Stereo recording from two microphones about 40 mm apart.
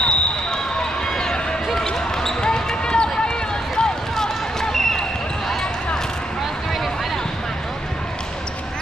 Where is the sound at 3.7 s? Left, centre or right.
Centre.